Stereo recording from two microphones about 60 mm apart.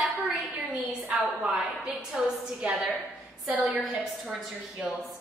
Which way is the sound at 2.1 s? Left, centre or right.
Centre.